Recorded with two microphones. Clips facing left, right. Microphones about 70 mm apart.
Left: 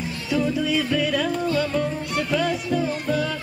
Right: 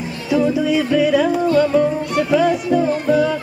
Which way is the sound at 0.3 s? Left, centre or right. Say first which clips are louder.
Right 6 dB; centre.